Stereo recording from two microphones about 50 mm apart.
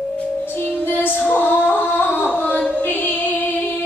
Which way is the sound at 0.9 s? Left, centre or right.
Left.